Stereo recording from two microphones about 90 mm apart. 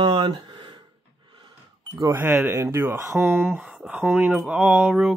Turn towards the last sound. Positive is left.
turn(degrees=-5)  # may be behind; listen again after turning